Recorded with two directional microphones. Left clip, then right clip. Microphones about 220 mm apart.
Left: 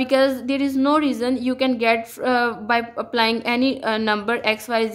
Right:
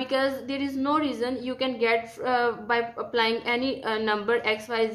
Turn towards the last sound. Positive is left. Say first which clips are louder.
# left 5 dB
turn(degrees=45)  # may be behind; listen again after turning